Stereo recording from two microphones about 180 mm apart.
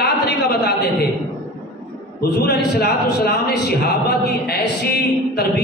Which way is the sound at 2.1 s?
60° left (ahead or behind).